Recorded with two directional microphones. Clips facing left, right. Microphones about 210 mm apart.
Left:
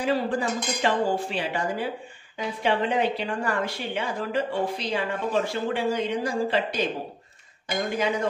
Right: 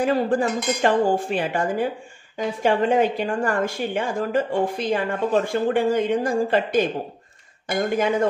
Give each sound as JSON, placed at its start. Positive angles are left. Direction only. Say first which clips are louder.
{"t": 0.0, "sound": "speech", "louder": "right 5 dB", "side_deg": -50}